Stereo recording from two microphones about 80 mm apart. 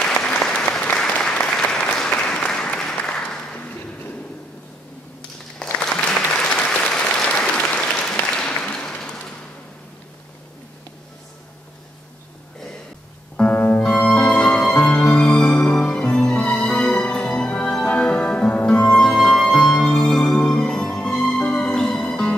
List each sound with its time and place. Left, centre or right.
0.0 s applause: centre
5.7 s applause: centre
8.9 s a sound: centre
13.4 s music: centre